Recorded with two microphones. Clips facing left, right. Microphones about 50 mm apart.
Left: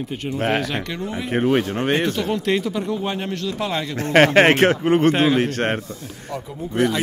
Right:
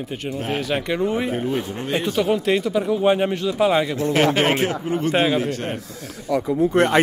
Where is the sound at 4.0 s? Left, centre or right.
Left.